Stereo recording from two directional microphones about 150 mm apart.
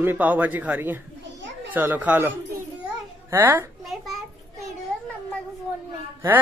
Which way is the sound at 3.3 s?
15° right (ahead or behind).